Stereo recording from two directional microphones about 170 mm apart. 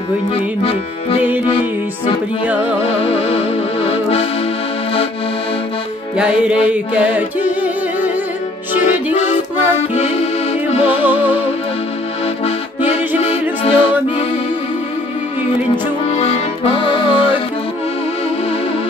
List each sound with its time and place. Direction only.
0.3 s music: 35° left (ahead or behind)
2.4 s music: 10° right (ahead or behind)
2.8 s music: 35° left (ahead or behind)
6.7 s music: 5° right (ahead or behind)
8.7 s music: 45° left (ahead or behind)
11.1 s music: 10° right (ahead or behind)
13.2 s music: 35° left (ahead or behind)
16.1 s accordion: 35° left (ahead or behind)